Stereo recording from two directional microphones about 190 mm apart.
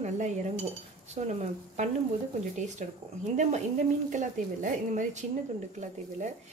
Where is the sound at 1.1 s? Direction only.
40° right (ahead or behind).